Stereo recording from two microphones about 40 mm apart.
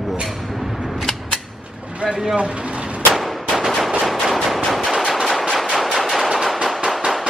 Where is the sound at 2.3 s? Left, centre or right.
Right.